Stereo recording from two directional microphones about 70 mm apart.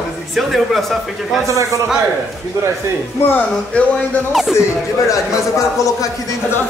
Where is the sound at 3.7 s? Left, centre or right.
Centre.